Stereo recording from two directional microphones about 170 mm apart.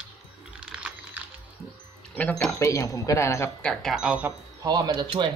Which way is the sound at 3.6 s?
Centre (ahead or behind).